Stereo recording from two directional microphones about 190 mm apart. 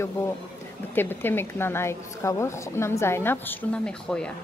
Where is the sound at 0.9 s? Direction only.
10° left (ahead or behind).